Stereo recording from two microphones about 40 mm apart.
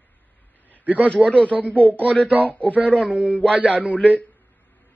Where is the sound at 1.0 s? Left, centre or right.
Left.